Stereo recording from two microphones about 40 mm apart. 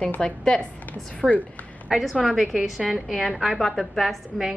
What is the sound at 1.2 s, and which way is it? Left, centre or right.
Speech, centre.